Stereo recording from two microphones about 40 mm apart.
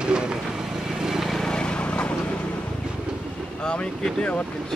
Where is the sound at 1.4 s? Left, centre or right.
Left.